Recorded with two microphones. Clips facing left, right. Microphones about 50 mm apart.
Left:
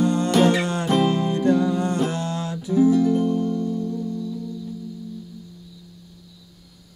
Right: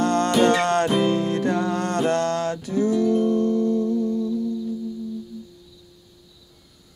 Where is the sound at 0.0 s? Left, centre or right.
Right.